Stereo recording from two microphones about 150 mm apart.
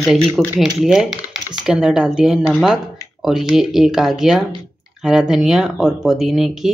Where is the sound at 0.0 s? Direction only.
Centre (ahead or behind).